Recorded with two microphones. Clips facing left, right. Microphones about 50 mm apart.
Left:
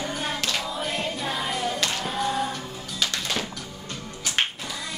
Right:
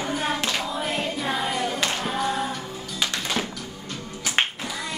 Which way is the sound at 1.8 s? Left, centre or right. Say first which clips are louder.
Right 2 dB; centre.